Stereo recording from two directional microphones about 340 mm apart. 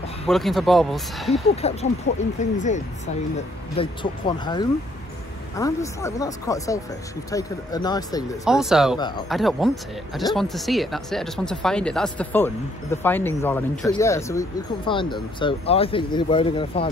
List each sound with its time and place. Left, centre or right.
0.3 s speech: centre
1.3 s speech: centre
8.5 s speech: centre